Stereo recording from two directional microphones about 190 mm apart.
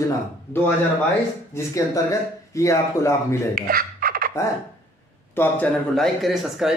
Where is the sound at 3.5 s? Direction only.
50° right (ahead or behind).